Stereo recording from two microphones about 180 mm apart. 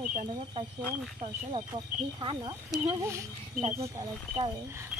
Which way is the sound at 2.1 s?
25° right (ahead or behind).